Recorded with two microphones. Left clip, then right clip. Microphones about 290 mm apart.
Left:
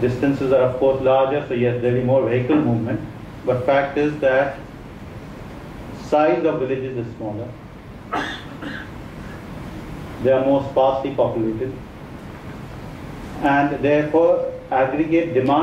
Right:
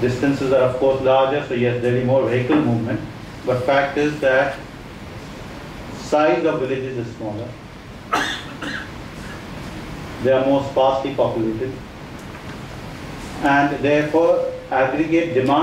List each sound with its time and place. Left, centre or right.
0.0 s a man's voice: centre
0.7 s speech: left
1.0 s a man's voice: centre
6.0 s speech: centre
8.1 s cough: centre
10.2 s a man's voice: centre
10.5 s speech: left
13.4 s a man's voice: centre